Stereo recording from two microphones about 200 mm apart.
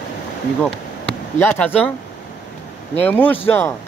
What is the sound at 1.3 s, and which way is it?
Speech, 10° left (ahead or behind).